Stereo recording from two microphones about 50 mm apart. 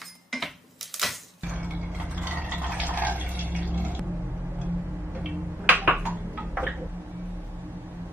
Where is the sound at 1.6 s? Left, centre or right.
Right.